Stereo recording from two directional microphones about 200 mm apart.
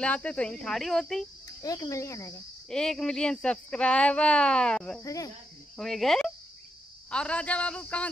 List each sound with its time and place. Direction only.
0.0 s speech: 5° left (ahead or behind)
1.6 s a man's voice: 15° left (ahead or behind)
2.7 s speech: 5° left (ahead or behind)
5.0 s a man's voice: 15° left (ahead or behind)
5.8 s a man's voice: centre (ahead or behind)